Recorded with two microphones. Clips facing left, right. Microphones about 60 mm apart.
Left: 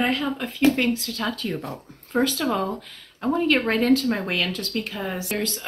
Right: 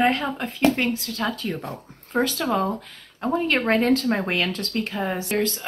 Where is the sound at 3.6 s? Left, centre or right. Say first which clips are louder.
Even; right.